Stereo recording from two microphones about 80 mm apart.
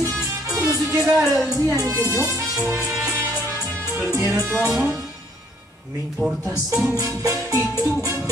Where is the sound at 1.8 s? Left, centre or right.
Right.